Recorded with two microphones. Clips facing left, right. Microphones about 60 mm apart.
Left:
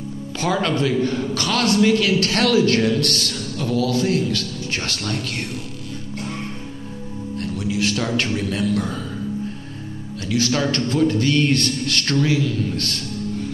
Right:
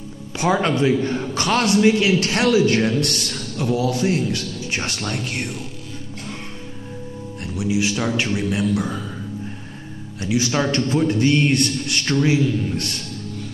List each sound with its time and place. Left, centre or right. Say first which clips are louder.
0.4 s a man's voice: right 2 dB; right
7.3 s speech: right 2 dB; centre
10.2 s a man's voice: even; centre